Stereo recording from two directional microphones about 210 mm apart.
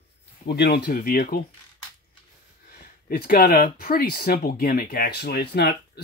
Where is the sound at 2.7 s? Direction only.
45° left (ahead or behind).